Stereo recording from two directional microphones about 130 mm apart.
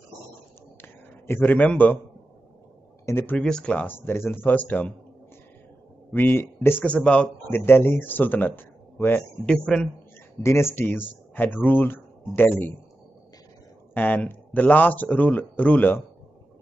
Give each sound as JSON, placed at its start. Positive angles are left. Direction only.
{"t": 0.7, "sound": "a sound", "side_deg": 15}
{"t": 3.1, "sound": "speech", "side_deg": 15}
{"t": 3.3, "sound": "speech", "side_deg": 5}
{"t": 6.1, "sound": "speech", "side_deg": 15}
{"t": 9.5, "sound": "speech", "side_deg": 5}
{"t": 10.4, "sound": "speech", "side_deg": 20}
{"t": 13.9, "sound": "speech", "side_deg": 10}